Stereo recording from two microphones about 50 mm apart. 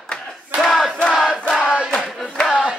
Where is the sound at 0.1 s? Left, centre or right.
Centre.